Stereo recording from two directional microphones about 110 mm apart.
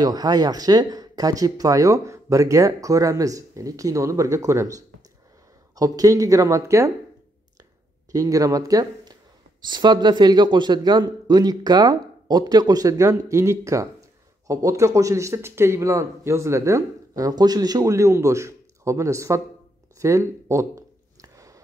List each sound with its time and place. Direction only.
0.0 s speech: 35° right (ahead or behind)
8.1 s speech: 30° right (ahead or behind)
20.0 s a sound: 25° right (ahead or behind)